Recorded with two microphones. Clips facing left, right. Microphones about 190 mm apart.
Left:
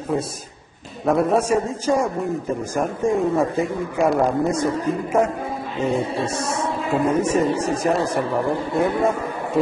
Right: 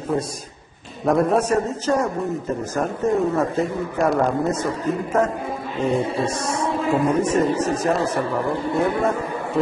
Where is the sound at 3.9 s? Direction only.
Centre (ahead or behind).